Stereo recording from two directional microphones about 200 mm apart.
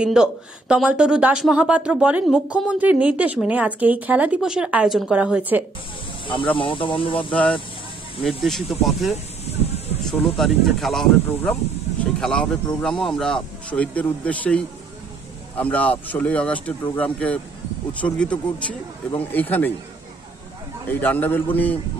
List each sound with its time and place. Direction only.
0.0 s speech: 5° right (ahead or behind)
6.2 s speech: 25° left (ahead or behind)
8.2 s speech: centre (ahead or behind)
20.8 s speech: 10° left (ahead or behind)